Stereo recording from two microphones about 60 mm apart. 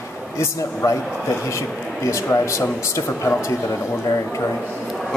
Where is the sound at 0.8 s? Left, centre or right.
Left.